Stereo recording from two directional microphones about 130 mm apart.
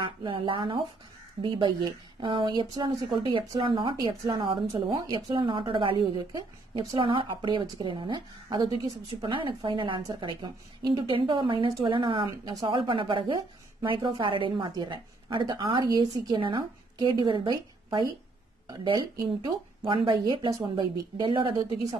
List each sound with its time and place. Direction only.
0.0 s a woman's voice: 40° right (ahead or behind)
12.3 s speech: 30° right (ahead or behind)
12.6 s a woman's voice: 40° right (ahead or behind)